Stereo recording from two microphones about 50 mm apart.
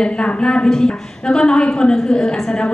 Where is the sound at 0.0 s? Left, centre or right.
Centre.